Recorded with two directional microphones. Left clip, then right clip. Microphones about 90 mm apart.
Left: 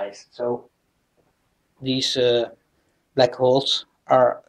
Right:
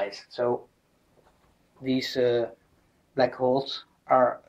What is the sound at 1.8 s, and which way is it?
Speech, 10° right (ahead or behind).